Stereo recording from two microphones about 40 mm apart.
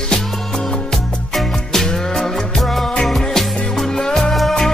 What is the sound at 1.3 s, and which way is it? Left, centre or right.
Music, centre.